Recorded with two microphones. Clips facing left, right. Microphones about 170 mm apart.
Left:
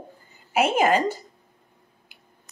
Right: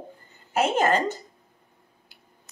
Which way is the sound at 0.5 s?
10° left (ahead or behind).